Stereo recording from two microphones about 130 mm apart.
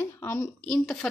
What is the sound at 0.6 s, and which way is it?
Speech, 5° left (ahead or behind).